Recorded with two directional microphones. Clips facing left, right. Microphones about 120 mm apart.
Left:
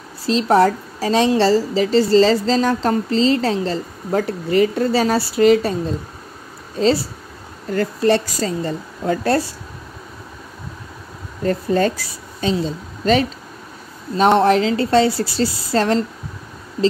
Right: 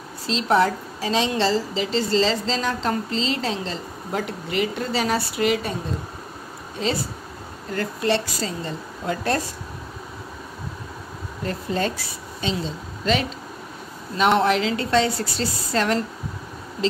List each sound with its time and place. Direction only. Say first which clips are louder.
0.3 s a woman's voice: left 5 dB; 40° left (ahead or behind)
6.8 s a woman's voice: left 8 dB; 35° left (ahead or behind)
11.4 s a woman's voice: left 8 dB; 45° left (ahead or behind)